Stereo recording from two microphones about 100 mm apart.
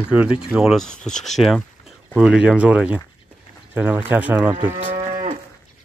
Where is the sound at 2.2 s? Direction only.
10° right (ahead or behind).